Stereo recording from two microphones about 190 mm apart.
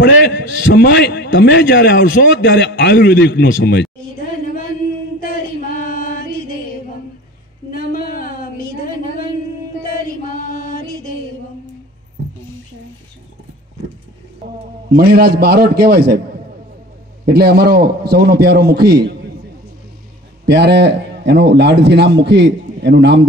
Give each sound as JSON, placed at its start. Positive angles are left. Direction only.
{"t": 0.0, "sound": "a man's voice", "side_deg": 65}
{"t": 5.2, "sound": "female singing", "side_deg": 45}
{"t": 7.7, "sound": "a sound", "side_deg": 50}
{"t": 9.8, "sound": "chant", "side_deg": 45}
{"t": 14.9, "sound": "a man's voice", "side_deg": -55}
{"t": 17.3, "sound": "a man's voice", "side_deg": -55}
{"t": 20.4, "sound": "a man's voice", "side_deg": -60}